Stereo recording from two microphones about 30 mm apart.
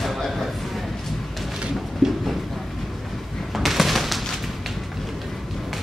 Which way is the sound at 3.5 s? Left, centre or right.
Centre.